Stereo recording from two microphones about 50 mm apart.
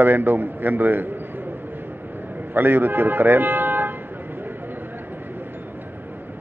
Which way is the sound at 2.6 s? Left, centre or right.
Right.